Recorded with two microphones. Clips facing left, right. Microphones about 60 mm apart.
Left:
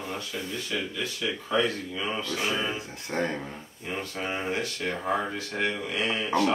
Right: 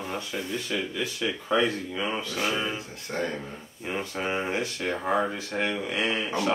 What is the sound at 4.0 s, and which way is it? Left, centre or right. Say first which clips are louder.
Speech: right 3 dB; centre.